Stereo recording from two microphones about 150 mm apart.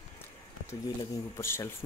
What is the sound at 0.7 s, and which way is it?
Speech, 20° left (ahead or behind).